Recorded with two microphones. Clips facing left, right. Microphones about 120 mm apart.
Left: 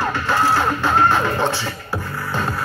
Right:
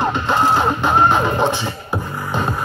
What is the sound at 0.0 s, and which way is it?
Music, 20° right (ahead or behind).